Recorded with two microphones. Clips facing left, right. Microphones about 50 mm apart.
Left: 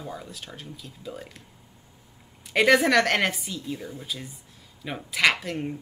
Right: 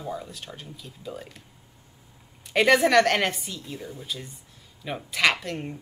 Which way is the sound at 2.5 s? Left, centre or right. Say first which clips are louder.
Even; centre.